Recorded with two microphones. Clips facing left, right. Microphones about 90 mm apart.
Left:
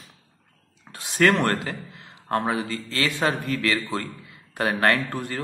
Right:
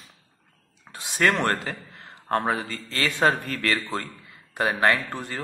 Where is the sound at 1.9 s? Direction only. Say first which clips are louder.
Right 1 dB; 35° right (ahead or behind).